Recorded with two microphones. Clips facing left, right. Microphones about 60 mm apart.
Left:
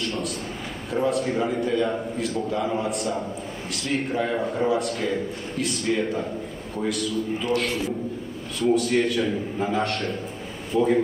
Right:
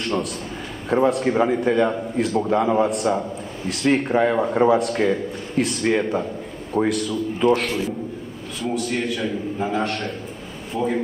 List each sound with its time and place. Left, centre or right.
0.8 s a man's voice: right
3.6 s a man's voice: right
8.5 s a man's voice: centre